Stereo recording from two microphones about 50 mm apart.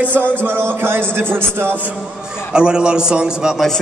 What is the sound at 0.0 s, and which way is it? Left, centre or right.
Speech, right.